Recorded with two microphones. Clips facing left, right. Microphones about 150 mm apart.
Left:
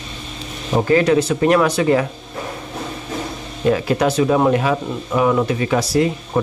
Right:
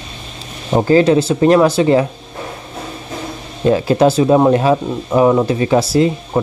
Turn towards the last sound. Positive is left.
turn(degrees=-25)  # may be behind; listen again after turning